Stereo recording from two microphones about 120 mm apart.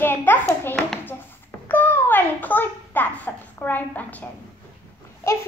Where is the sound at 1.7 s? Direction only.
15° left (ahead or behind).